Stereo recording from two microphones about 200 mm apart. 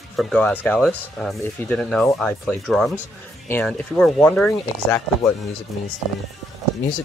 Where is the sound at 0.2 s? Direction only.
5° left (ahead or behind).